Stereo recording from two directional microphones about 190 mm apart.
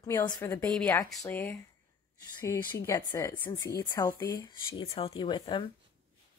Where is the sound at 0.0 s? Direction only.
15° left (ahead or behind).